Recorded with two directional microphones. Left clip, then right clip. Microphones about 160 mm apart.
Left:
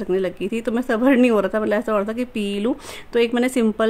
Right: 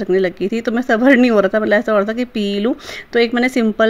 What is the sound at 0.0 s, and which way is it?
Speech, 15° right (ahead or behind).